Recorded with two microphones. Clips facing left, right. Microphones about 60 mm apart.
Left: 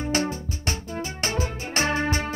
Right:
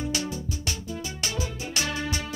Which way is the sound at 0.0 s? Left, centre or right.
Left.